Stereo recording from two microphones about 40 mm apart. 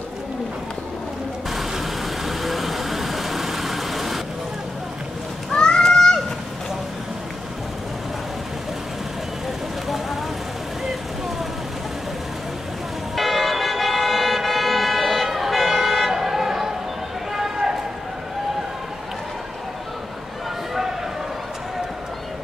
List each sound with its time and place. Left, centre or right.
1.5 s vehicle: centre
5.5 s a sound: centre
9.8 s vehicle: centre
13.1 s vehicle: centre
17.3 s run: centre